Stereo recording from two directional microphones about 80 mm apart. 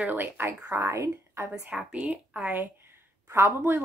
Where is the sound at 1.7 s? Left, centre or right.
Centre.